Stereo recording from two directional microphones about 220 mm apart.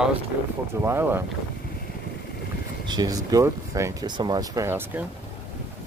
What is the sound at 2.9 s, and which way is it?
Speech, 15° right (ahead or behind).